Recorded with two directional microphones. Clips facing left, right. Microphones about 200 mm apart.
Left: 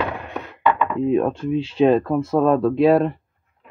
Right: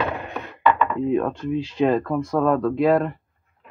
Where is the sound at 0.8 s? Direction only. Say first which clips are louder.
Left 2 dB; 15° left (ahead or behind).